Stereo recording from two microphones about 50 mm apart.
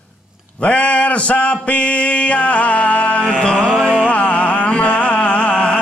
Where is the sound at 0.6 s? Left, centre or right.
Left.